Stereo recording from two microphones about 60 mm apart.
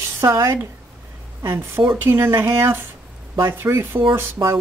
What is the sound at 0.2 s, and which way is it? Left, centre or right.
Speech, right.